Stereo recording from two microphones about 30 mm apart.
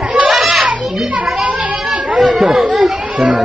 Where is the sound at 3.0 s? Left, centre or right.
Right.